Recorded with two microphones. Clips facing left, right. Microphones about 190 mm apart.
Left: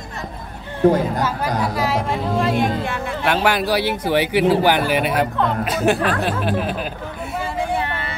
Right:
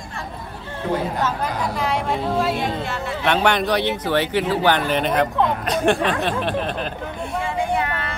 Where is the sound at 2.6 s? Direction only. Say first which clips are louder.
Left 3 dB; 55° left (ahead or behind).